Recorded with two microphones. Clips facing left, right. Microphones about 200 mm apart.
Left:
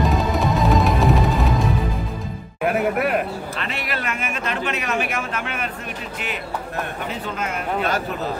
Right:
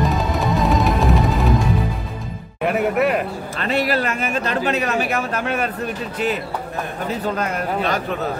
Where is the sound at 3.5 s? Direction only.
40° right (ahead or behind).